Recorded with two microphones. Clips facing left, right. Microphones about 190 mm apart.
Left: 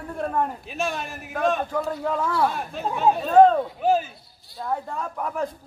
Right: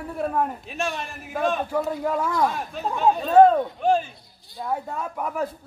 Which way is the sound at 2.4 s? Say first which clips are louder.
Even; centre (ahead or behind).